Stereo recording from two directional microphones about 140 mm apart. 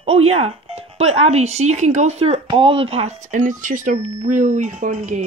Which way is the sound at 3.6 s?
65° right (ahead or behind).